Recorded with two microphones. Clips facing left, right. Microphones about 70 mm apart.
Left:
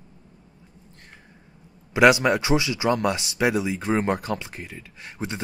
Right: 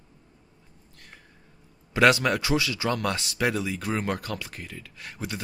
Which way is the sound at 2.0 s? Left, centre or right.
Centre.